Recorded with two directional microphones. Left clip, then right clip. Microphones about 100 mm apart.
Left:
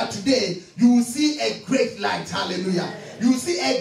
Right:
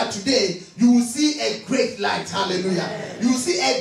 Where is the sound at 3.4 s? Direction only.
25° right (ahead or behind).